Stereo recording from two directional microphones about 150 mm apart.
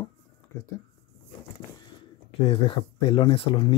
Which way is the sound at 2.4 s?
35° left (ahead or behind).